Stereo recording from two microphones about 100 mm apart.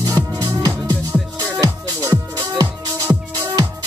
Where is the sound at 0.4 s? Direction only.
35° right (ahead or behind).